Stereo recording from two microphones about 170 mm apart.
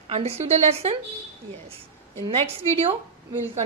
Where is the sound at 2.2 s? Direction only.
35° right (ahead or behind).